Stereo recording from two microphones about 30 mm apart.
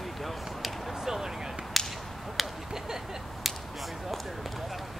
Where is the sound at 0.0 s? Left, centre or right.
Centre.